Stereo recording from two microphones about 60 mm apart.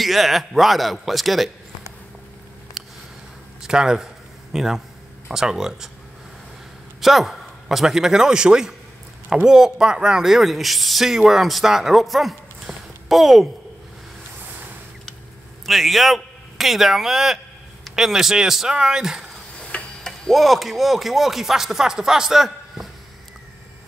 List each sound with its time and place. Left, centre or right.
0.0 s speech: centre
2.8 s a sound: centre
5.3 s speech: centre
7.0 s a man's voice: centre
12.6 s a sound: centre
15.6 s a man's voice: centre
19.5 s tick-tock: centre
20.1 s speech: centre